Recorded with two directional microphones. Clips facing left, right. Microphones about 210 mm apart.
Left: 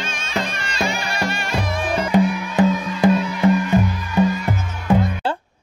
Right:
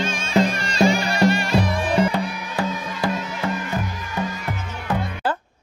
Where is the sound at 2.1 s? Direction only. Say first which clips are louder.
Left 8 dB; 20° left (ahead or behind).